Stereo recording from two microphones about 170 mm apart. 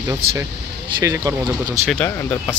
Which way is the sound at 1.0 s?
20° right (ahead or behind).